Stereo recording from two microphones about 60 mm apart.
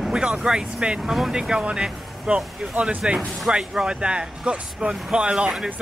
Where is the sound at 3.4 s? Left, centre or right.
Centre.